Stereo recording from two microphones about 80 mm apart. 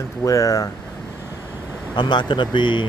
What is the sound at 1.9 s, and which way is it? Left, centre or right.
Speech, left.